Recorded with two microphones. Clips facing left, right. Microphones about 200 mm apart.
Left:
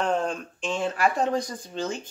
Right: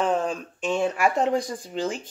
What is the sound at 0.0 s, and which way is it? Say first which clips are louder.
Speech: right 2 dB; centre (ahead or behind).